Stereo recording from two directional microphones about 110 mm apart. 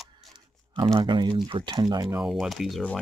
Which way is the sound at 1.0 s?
45° right (ahead or behind).